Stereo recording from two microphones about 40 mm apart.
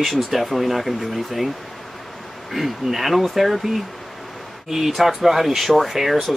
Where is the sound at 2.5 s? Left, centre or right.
Centre.